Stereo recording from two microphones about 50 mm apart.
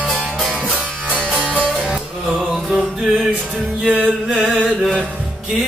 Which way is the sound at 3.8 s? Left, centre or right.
Right.